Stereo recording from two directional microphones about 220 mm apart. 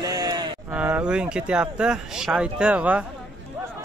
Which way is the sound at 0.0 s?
20° right (ahead or behind).